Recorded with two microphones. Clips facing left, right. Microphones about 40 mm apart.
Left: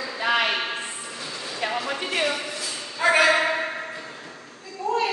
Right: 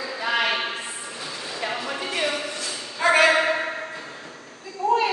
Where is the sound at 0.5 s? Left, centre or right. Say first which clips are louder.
Right 1 dB; centre.